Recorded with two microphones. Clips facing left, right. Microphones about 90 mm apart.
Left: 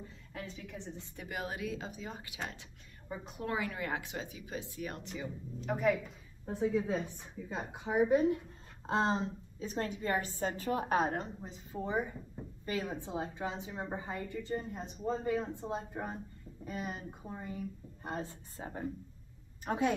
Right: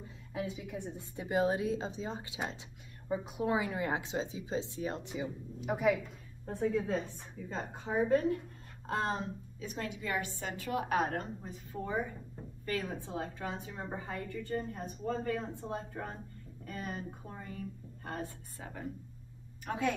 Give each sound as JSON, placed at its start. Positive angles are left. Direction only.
{"t": 0.3, "sound": "a woman's voice", "side_deg": -15}